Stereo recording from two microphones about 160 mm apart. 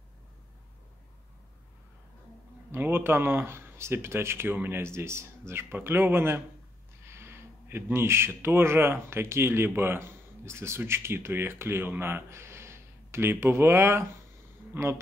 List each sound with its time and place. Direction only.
2.7 s speech: 15° right (ahead or behind)